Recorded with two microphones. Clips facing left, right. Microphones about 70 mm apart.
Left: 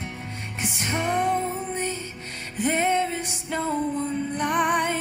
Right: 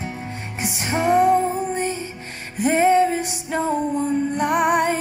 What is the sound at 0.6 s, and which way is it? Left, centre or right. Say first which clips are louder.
Music: right 5 dB; centre.